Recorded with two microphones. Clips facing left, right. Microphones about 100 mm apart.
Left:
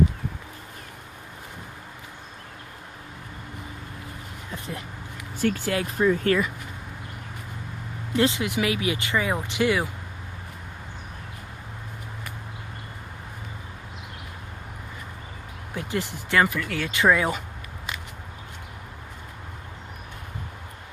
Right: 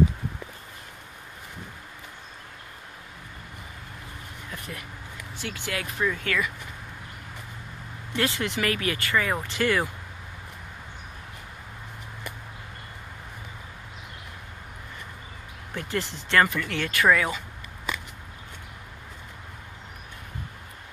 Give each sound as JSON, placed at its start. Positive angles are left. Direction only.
{"t": 4.5, "sound": "a sound", "side_deg": 25}
{"t": 5.4, "sound": "speech", "side_deg": 40}
{"t": 8.2, "sound": "speech", "side_deg": 15}
{"t": 15.7, "sound": "speech", "side_deg": 15}
{"t": 16.9, "sound": "speech", "side_deg": 20}